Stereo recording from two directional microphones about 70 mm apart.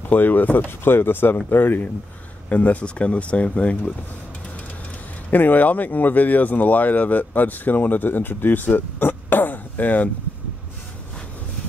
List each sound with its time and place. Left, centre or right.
0.1 s speech: left
5.3 s speech: left